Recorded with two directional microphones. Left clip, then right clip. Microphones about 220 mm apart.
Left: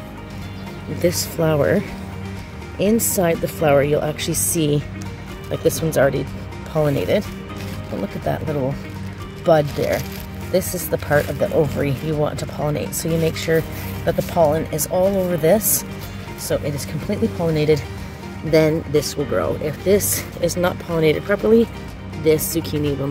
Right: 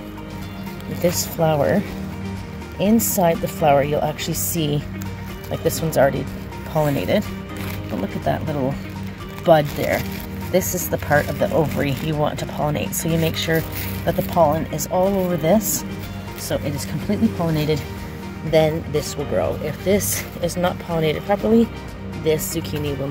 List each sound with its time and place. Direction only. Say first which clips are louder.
1.0 s speech: even; 20° left (ahead or behind)
3.1 s speech: right 1 dB; 15° left (ahead or behind)
9.5 s speech: even; 5° left (ahead or behind)